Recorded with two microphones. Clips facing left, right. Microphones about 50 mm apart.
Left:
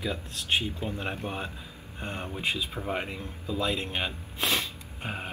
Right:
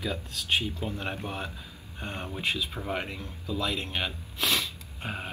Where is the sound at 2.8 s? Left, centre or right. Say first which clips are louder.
Left 1 dB; left.